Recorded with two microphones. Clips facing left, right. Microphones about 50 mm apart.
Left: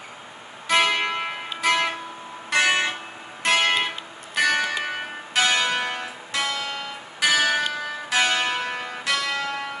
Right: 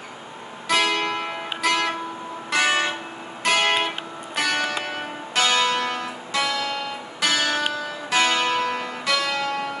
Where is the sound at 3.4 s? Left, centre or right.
Centre.